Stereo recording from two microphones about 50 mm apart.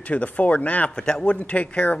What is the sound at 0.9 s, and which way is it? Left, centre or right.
Speech, centre.